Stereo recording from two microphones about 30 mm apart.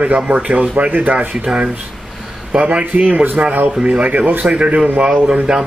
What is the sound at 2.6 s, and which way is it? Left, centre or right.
Speech, right.